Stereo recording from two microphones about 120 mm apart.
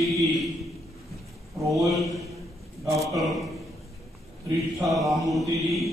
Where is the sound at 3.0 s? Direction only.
Centre (ahead or behind).